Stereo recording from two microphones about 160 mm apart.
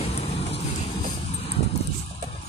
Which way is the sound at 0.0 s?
40° left (ahead or behind).